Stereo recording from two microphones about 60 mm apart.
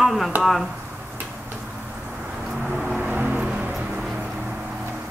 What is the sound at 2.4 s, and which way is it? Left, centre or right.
Vehicle, centre.